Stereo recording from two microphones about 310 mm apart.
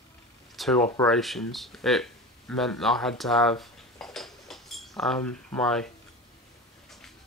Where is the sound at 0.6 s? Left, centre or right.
Centre.